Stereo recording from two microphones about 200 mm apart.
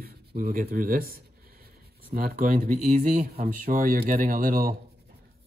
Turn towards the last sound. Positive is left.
turn(degrees=-45)  # may be behind; listen again after turning